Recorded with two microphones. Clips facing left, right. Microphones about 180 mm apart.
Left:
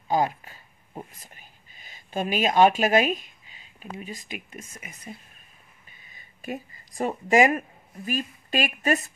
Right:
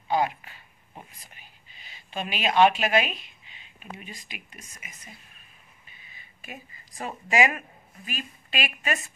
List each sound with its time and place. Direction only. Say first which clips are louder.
0.1 s speech: left 1 dB; 40° left (ahead or behind)
4.8 s speech: left 7 dB; 35° left (ahead or behind)
6.0 s a sound: left 10 dB; 40° left (ahead or behind)
7.2 s a woman's voice: left 4 dB; 40° left (ahead or behind)